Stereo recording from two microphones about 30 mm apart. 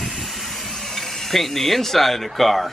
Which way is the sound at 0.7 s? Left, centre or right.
Centre.